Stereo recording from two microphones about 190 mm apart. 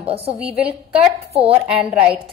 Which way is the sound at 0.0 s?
30° right (ahead or behind).